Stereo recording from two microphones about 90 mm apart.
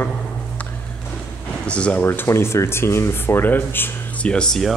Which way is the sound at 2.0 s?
30° left (ahead or behind).